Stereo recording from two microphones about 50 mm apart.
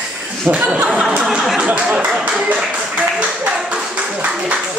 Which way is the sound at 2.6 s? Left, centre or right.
Centre.